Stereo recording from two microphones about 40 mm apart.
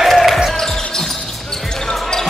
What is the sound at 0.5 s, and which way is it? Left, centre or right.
Basketball bounce, centre.